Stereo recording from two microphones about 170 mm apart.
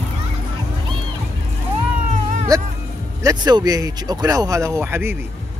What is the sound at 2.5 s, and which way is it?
Speech, 20° right (ahead or behind).